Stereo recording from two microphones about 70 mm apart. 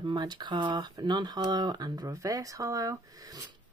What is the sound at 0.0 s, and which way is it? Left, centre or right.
Speech, right.